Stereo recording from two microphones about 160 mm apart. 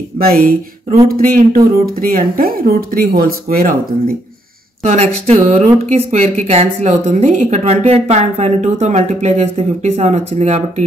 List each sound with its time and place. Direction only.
0.3 s speech: 65° right (ahead or behind)
4.8 s speech: 40° right (ahead or behind)